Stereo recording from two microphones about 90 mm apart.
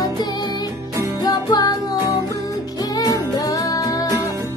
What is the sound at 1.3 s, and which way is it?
Music, 45° left (ahead or behind).